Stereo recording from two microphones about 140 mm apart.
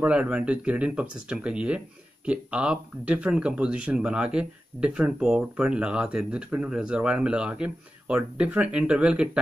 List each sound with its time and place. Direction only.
0.0 s speech: 10° right (ahead or behind)